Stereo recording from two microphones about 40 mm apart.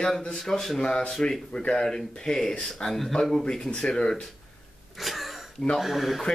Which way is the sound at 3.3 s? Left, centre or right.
Centre.